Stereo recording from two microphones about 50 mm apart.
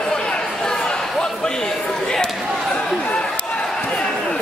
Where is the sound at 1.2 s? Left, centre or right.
Centre.